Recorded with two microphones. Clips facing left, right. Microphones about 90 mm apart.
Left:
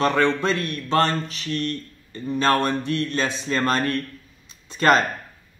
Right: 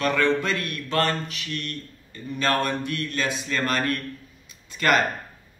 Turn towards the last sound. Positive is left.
turn(degrees=30)  # may be behind; listen again after turning